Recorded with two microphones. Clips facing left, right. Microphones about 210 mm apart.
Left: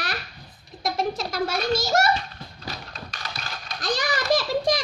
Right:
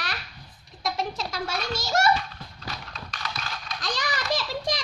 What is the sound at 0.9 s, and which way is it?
Speech, 40° left (ahead or behind).